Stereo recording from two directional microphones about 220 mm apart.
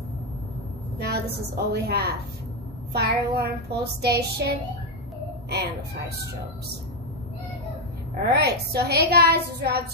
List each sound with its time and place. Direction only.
0.9 s a sound: 45° right (ahead or behind)
1.7 s a woman's voice: 45° right (ahead or behind)
8.2 s a woman's voice: 50° right (ahead or behind)